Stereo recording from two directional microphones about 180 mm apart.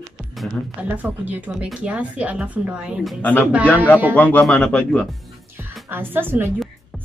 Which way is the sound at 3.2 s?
10° left (ahead or behind).